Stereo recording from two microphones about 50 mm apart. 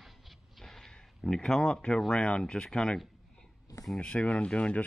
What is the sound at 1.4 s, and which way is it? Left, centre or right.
Speech, centre.